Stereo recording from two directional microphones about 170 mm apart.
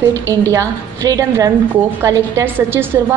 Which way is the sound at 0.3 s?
20° right (ahead or behind).